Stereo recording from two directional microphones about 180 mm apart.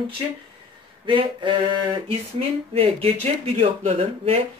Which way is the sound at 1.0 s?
30° right (ahead or behind).